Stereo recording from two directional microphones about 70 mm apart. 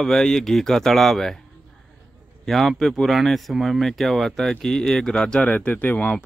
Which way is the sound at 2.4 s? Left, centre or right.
Centre.